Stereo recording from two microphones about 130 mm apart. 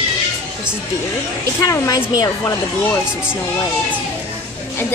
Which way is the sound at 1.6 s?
25° left (ahead or behind).